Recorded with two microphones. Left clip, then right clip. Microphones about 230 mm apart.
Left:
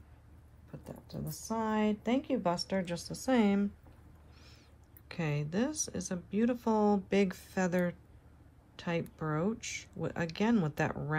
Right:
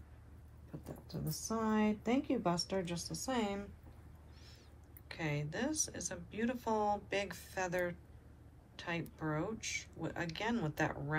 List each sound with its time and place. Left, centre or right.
0.8 s a woman's voice: left
5.0 s speech: left
8.7 s a sound: left
9.3 s speech: left